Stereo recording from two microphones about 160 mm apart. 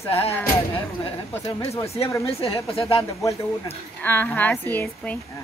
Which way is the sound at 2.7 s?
35° left (ahead or behind).